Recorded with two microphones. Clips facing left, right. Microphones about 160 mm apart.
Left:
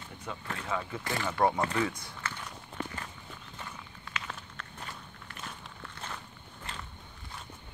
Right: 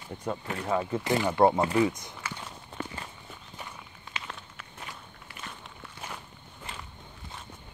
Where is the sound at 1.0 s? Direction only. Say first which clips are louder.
Right 6 dB; 20° right (ahead or behind).